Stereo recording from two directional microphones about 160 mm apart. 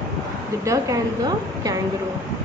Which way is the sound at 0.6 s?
20° right (ahead or behind).